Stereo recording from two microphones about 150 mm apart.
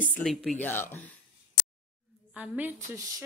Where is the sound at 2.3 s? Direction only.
10° right (ahead or behind).